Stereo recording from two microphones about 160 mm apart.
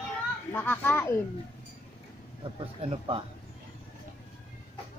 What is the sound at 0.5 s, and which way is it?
Speech, 10° left (ahead or behind).